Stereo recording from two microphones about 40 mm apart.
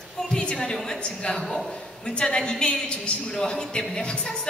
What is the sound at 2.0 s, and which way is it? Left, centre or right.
A woman's voice, left.